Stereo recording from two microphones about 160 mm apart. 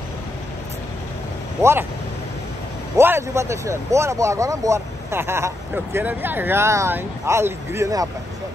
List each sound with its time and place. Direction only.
1.6 s speech: 15° right (ahead or behind)
3.0 s speech: 15° right (ahead or behind)